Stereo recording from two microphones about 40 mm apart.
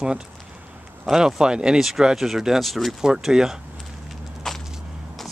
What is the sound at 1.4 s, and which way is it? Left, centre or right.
Speech, right.